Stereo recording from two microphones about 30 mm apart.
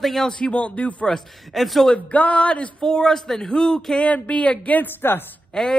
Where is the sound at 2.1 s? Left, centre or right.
Left.